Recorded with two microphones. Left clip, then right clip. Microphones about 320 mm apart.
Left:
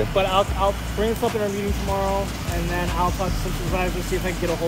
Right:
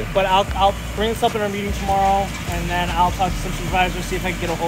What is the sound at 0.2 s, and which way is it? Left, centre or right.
Speech, right.